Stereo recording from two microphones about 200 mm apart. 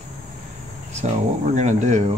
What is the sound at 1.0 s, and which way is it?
Speech, 35° right (ahead or behind).